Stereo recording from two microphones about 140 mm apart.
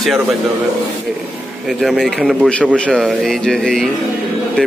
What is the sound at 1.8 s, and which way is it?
A man's voice, centre (ahead or behind).